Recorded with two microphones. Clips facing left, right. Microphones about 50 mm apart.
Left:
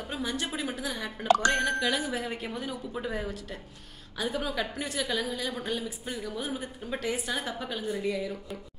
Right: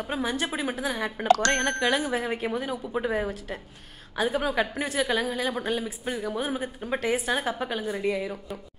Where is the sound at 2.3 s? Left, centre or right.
Right.